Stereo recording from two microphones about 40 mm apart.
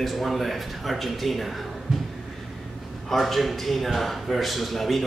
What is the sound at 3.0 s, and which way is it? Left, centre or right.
A man's voice, centre.